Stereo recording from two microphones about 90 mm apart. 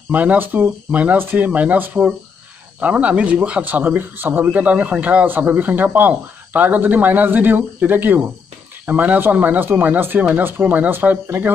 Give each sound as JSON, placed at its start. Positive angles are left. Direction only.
{"t": 0.1, "sound": "a man's voice", "side_deg": -20}